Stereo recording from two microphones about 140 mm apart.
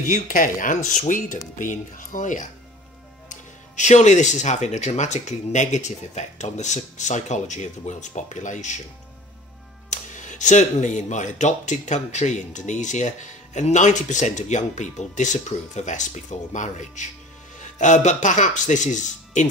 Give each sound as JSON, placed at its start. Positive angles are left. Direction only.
{"t": 0.0, "sound": "speech", "side_deg": 70}
{"t": 9.8, "sound": "speech", "side_deg": 65}